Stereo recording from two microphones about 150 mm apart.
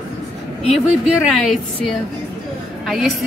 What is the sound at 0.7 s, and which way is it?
A woman's voice, centre (ahead or behind).